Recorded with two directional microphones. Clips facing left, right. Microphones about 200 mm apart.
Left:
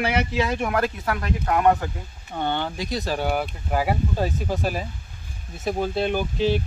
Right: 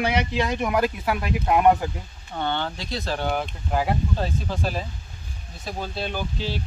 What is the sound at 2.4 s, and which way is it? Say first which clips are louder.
Speech: left 1 dB; 15° left (ahead or behind).